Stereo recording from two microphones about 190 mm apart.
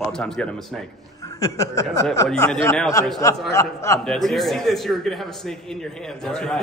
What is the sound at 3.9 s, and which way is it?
A man's voice, centre (ahead or behind).